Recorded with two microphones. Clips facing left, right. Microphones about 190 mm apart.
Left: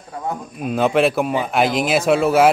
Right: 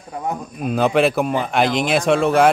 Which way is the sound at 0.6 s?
Centre (ahead or behind).